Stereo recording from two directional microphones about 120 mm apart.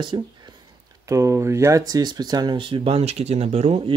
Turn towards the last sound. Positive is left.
turn(degrees=-60)  # may be behind; listen again after turning